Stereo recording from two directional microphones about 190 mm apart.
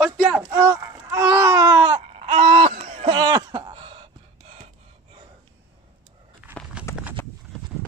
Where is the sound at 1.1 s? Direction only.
15° right (ahead or behind).